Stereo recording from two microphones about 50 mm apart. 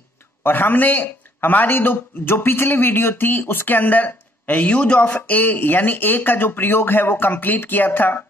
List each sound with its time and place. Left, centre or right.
0.4 s a man's voice: left